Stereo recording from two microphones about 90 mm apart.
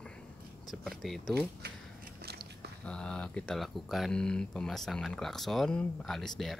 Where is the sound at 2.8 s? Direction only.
10° left (ahead or behind).